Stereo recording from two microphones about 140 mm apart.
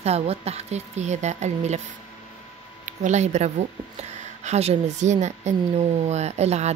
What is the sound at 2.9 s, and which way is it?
Speech, 55° right (ahead or behind).